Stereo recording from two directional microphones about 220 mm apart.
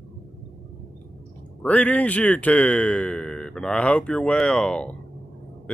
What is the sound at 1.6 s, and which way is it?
Speech, 5° left (ahead or behind).